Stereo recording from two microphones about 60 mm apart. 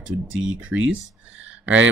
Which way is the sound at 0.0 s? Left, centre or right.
Centre.